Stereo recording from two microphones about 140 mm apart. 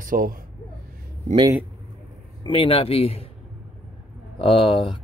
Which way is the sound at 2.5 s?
40° left (ahead or behind).